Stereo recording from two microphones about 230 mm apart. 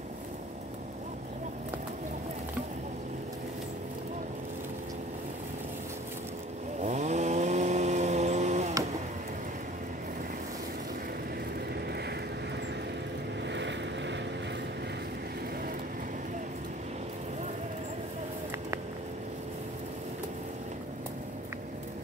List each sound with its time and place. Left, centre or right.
6.8 s chainsaw: right
13.5 s vehicle: right